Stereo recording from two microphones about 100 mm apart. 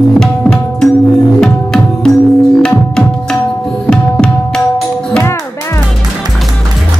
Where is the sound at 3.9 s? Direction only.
5° left (ahead or behind).